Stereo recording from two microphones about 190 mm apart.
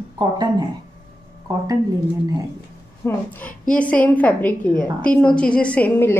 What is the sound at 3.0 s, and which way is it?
A woman's voice, 10° left (ahead or behind).